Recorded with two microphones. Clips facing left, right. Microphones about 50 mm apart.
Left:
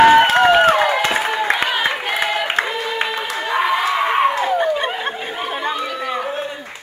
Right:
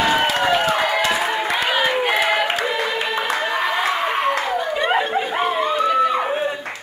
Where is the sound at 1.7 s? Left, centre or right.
Centre.